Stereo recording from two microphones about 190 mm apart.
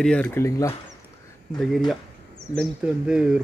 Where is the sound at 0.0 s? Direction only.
5° left (ahead or behind).